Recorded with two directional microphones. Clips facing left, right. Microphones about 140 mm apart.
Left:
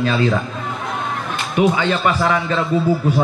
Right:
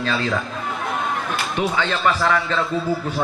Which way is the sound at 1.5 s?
5° left (ahead or behind).